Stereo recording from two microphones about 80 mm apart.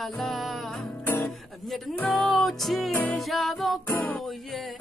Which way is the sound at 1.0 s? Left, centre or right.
Left.